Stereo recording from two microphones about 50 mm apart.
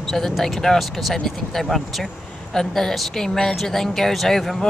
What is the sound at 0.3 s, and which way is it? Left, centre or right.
A man's voice, centre.